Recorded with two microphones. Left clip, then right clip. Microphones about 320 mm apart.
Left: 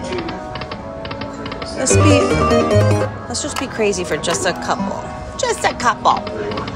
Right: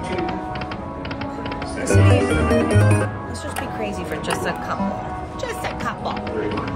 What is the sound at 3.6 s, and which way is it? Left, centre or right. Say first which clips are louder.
Speech: left 9 dB; centre.